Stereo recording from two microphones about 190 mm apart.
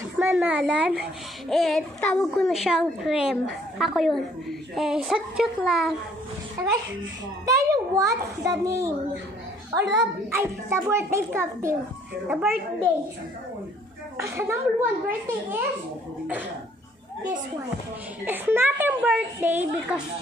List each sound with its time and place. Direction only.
0.2 s a child's voice: 10° right (ahead or behind)
6.6 s a child's voice: 15° right (ahead or behind)
14.1 s a child's voice: 15° right (ahead or behind)
18.2 s a child's voice: 10° right (ahead or behind)